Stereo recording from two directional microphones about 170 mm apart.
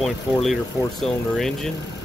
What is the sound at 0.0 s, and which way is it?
Speech, centre (ahead or behind).